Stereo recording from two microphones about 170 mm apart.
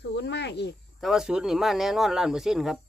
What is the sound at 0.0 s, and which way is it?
Cricket, 85° left.